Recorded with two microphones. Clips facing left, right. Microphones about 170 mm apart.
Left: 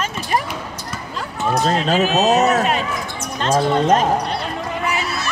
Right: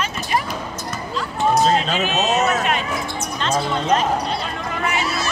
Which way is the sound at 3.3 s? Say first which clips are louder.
Left 6 dB; 50° left (ahead or behind).